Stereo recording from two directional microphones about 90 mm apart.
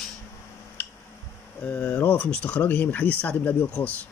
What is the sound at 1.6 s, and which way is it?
Speech, 20° left (ahead or behind).